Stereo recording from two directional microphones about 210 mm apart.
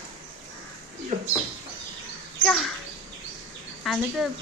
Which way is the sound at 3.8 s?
Centre (ahead or behind).